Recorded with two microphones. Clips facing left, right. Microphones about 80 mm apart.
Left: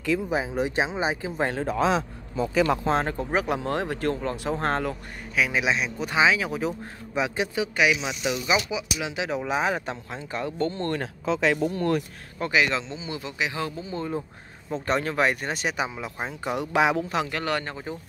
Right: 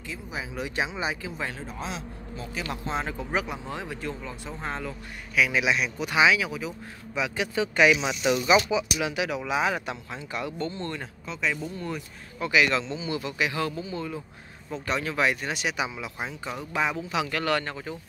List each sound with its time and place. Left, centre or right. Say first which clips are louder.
0.3 s speech: left 8 dB; left
1.5 s speech: left 11 dB; left
2.6 s speech: left 7 dB; left
3.4 s speech: left 8 dB; left
5.3 s speech: even; left
7.2 s a man's voice: left 3 dB; left
7.5 s speech: right 4 dB; centre
8.3 s speech: right 4 dB; centre; by 11.0 s left
11.0 s speech: left 8 dB; left
12.4 s speech: even; left
12.6 s a man's voice: right 1 dB; left
13.8 s speech: left 3 dB; left
16.5 s speech: left 6 dB; left
17.3 s a man's voice: right 1 dB; left